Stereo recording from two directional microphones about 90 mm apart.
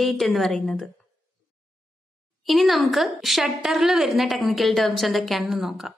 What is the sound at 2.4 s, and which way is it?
A woman's voice, centre (ahead or behind).